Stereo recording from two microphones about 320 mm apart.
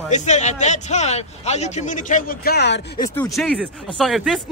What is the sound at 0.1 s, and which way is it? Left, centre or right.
A man's voice, left.